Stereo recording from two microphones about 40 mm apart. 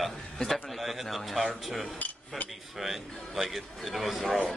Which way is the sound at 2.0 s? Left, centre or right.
Left.